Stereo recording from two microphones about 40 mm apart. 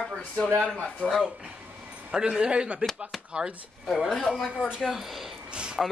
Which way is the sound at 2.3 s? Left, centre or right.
Right.